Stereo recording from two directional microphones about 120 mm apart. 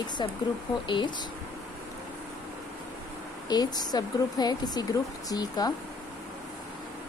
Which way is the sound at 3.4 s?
35° left (ahead or behind).